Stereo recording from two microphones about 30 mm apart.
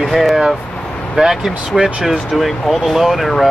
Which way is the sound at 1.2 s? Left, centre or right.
Right.